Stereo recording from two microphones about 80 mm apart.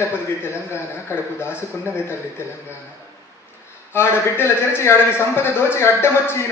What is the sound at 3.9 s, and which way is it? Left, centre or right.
A man's voice, left.